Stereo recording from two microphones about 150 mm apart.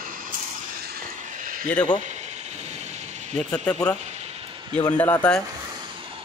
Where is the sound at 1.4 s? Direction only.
65° right (ahead or behind).